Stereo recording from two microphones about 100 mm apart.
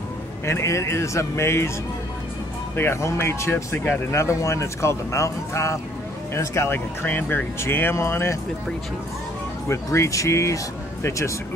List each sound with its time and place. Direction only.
0.5 s speech: 30° left (ahead or behind)
2.7 s speech: 25° left (ahead or behind)
9.7 s speech: 30° left (ahead or behind)